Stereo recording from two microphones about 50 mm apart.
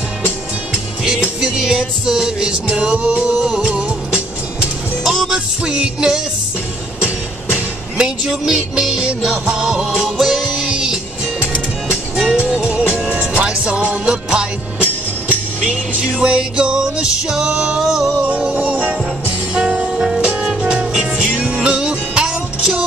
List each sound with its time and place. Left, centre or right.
1.0 s music: centre
5.0 s music: centre
5.3 s music: centre
10.0 s music: centre
10.4 s music: right
15.6 s music: right
18.6 s music: right; by 21.4 s centre
21.4 s music: right